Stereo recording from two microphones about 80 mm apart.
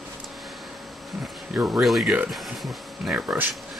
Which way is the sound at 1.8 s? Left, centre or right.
Centre.